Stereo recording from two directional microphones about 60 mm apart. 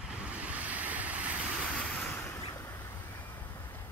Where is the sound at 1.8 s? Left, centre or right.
Left.